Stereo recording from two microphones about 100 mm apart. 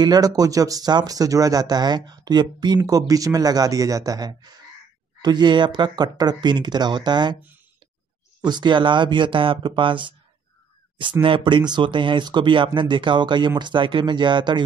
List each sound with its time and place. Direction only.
0.0 s speech: 40° right (ahead or behind)
8.5 s speech: 50° right (ahead or behind)
11.2 s speech: 55° right (ahead or behind)